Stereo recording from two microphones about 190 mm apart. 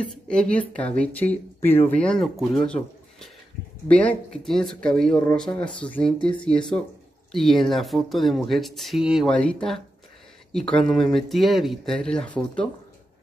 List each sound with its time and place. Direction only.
0.0 s speech: 5° left (ahead or behind)